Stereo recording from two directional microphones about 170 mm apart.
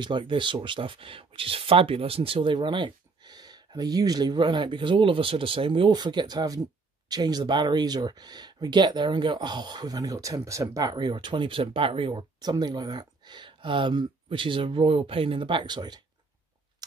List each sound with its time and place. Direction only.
0.0 s speech: 30° right (ahead or behind)